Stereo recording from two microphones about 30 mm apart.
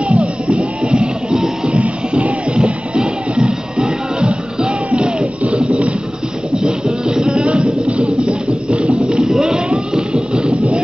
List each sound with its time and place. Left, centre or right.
0.1 s music: right
6.5 s music: right
9.2 s a sound: right
9.7 s music: right